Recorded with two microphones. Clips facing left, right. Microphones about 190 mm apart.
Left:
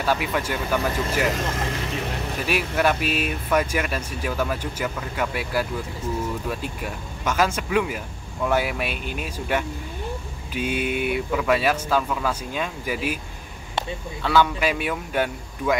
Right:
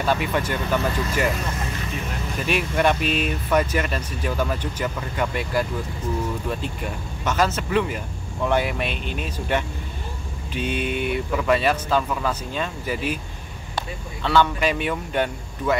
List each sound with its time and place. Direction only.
0.0 s speech: 5° left (ahead or behind)
1.4 s speech: 90° left
2.4 s speech: 5° left (ahead or behind)
14.2 s speech: 10° left (ahead or behind)